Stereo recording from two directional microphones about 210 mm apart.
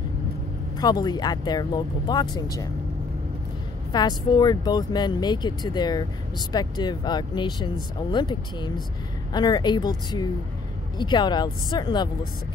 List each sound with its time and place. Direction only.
0.7 s speech: 20° left (ahead or behind)
3.9 s speech: 20° left (ahead or behind)